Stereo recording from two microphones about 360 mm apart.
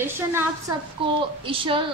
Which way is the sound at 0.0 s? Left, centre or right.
Centre.